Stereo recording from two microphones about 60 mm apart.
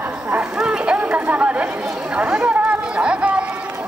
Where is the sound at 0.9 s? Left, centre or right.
Right.